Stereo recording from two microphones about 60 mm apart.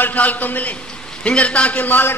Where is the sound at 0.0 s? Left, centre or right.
Left.